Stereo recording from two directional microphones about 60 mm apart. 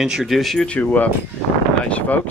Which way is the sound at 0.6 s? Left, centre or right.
Left.